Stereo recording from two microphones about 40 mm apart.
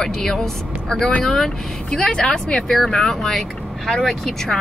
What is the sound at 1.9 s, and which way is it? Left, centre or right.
Speech, left.